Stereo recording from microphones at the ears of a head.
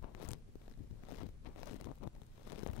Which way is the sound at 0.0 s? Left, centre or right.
Left.